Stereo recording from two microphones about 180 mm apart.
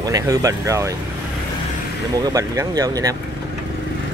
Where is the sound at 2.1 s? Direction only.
20° right (ahead or behind).